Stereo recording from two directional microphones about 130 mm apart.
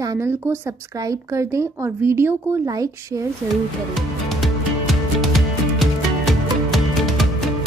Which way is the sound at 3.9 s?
Centre (ahead or behind).